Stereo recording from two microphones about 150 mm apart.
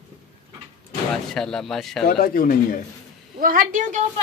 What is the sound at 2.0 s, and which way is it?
Speech, 75° left (ahead or behind).